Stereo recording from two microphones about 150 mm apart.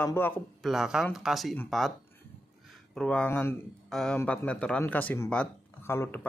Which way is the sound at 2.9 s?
5° left (ahead or behind).